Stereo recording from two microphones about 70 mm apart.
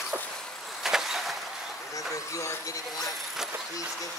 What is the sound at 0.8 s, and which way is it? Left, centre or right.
Vehicle, centre.